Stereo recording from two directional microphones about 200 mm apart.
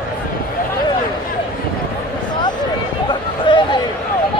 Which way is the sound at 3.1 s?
25° left (ahead or behind).